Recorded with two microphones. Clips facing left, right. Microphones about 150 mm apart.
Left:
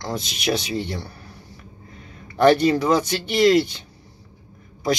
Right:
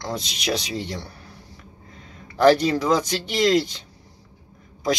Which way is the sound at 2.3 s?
Centre (ahead or behind).